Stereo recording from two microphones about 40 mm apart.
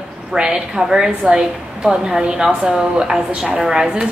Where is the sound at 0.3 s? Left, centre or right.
Centre.